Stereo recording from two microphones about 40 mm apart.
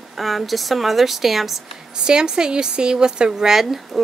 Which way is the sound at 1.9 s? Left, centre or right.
Centre.